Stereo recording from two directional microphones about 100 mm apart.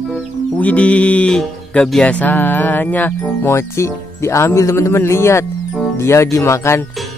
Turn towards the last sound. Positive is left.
turn(degrees=30)  # may be behind; listen again after turning